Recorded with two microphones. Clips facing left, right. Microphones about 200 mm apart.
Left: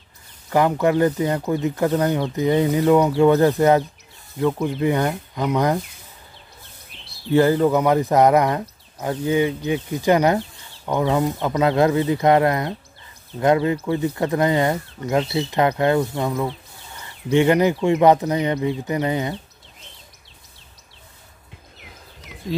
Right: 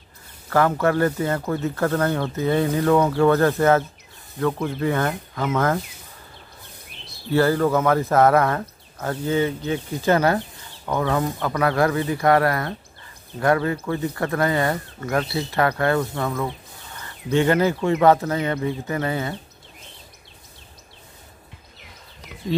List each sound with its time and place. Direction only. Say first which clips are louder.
0.5 s speech: left 1 dB; 15° left (ahead or behind)
7.2 s speech: left 3 dB; 15° left (ahead or behind)